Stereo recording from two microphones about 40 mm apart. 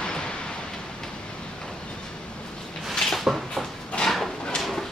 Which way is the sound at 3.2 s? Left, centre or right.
Centre.